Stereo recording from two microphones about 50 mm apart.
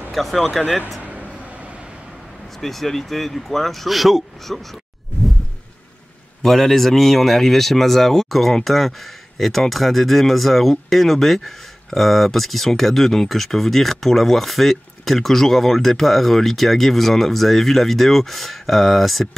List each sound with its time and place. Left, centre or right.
0.1 s speech: centre
1.0 s a sound: right
2.6 s speech: centre
6.4 s speech: centre